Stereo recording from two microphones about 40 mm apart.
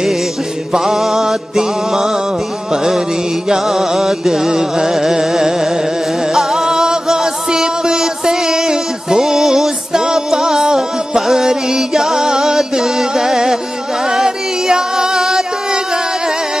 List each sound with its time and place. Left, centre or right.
0.7 s music: centre